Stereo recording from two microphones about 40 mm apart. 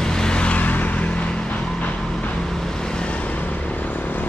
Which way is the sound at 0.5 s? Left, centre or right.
Left.